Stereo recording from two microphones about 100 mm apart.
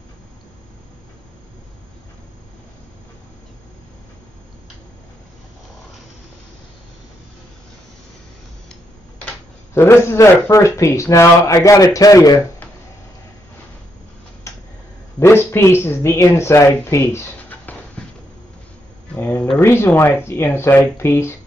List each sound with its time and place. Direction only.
9.8 s speech: 25° left (ahead or behind)
14.5 s a sound: 30° left (ahead or behind)
15.1 s speech: 25° left (ahead or behind)
17.5 s dog: 15° left (ahead or behind)
19.1 s a sound: 20° left (ahead or behind)
19.6 s speech: 25° left (ahead or behind)